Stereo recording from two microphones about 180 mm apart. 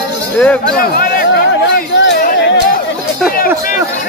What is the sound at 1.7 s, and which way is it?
Chatter, 80° left.